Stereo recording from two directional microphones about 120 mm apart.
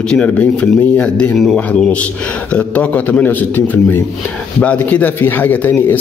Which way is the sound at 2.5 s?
10° left (ahead or behind).